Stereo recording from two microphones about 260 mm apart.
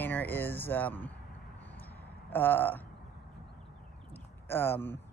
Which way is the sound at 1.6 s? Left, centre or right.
Centre.